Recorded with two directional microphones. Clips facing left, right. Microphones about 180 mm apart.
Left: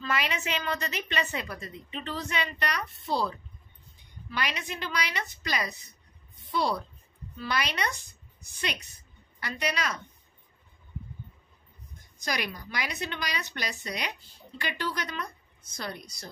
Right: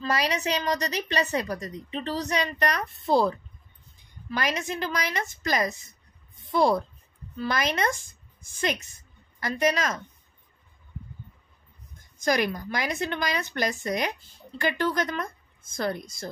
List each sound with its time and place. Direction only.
0.0 s a woman's voice: 40° right (ahead or behind)
12.2 s speech: 50° right (ahead or behind)